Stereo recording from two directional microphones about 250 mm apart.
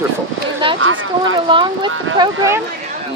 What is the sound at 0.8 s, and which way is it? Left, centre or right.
Speech, right.